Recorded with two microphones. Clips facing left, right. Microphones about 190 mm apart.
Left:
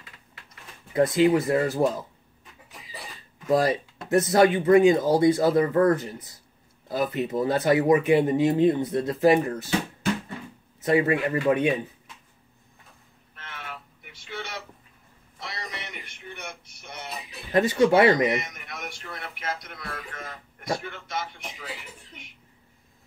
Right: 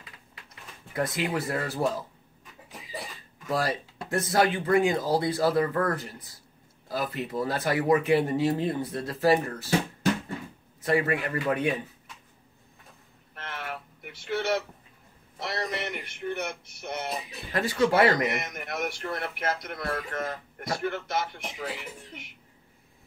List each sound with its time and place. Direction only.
0.9 s speech: 25° left (ahead or behind)
3.4 s speech: 20° left (ahead or behind)
10.8 s speech: 20° left (ahead or behind)
13.5 s a sound: 55° right (ahead or behind)
17.5 s speech: 20° left (ahead or behind)
18.4 s speech: 55° right (ahead or behind)